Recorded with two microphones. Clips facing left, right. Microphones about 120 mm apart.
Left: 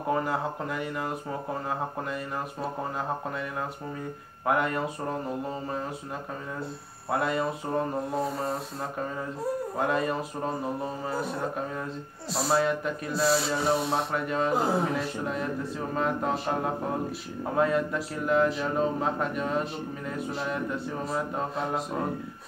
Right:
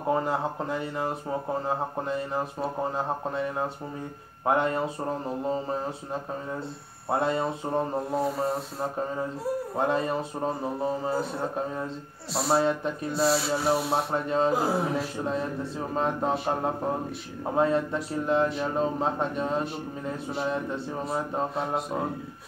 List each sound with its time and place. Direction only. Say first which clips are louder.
0.1 s speech: right 2 dB; 25° right (ahead or behind)
4.5 s speech: right 2 dB; 25° right (ahead or behind)
7.1 s speech: right 1 dB; 30° right (ahead or behind)
8.1 s rub: right 2 dB; centre (ahead or behind)
9.8 s speech: right 2 dB; 25° right (ahead or behind)
13.1 s rub: right 1 dB; centre (ahead or behind)
14.1 s speech: right 3 dB; 30° right (ahead or behind)
14.5 s rub: even; centre (ahead or behind)
15.9 s speech: right 1 dB; 25° right (ahead or behind)
17.6 s speech: right 1 dB; 25° right (ahead or behind)
21.5 s rub: right 1 dB; centre (ahead or behind)